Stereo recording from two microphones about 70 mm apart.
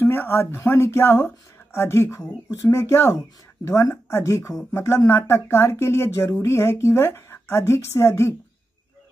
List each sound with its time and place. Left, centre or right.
0.0 s speech: left